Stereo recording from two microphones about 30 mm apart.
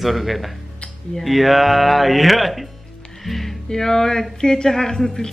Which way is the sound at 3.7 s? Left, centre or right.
Centre.